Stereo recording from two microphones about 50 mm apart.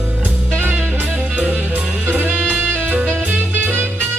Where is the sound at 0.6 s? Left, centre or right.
Right.